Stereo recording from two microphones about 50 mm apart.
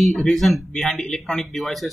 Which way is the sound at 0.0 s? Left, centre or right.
Centre.